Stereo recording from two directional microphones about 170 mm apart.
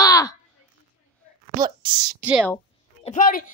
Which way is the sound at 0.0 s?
20° left (ahead or behind).